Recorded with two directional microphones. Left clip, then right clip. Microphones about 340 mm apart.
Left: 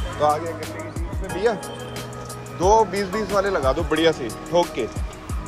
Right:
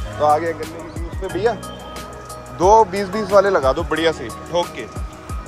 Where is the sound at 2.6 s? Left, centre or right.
Centre.